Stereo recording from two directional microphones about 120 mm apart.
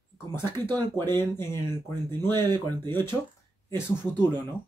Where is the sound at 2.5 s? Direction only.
35° right (ahead or behind).